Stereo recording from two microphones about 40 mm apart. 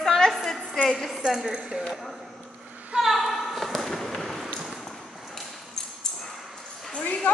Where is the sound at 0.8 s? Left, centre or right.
Centre.